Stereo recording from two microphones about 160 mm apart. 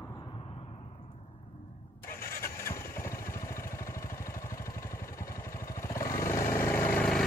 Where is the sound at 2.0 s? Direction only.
15° left (ahead or behind).